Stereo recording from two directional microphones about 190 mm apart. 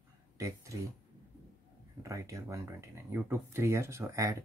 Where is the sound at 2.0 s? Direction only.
15° right (ahead or behind).